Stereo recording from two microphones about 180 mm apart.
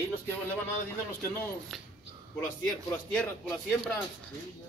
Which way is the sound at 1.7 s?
Centre (ahead or behind).